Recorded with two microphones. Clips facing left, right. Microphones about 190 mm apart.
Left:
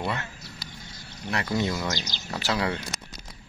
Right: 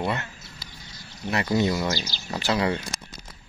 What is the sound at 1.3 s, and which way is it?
Speech, 5° right (ahead or behind).